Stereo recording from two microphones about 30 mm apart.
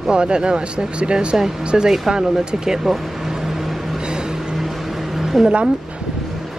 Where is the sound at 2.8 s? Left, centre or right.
Centre.